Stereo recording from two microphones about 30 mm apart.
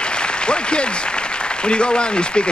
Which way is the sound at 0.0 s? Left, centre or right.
Left.